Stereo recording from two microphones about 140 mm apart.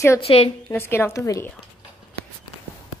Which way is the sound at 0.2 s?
45° left (ahead or behind).